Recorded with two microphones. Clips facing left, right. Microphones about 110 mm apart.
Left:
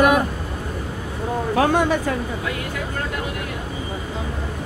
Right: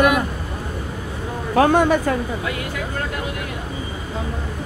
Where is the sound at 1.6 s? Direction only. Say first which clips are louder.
Right 4 dB; 50° right (ahead or behind).